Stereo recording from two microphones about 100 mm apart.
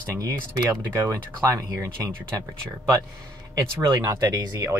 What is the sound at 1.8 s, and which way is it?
Speech, 35° right (ahead or behind).